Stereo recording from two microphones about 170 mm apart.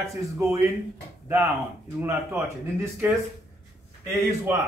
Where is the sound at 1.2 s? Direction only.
15° right (ahead or behind).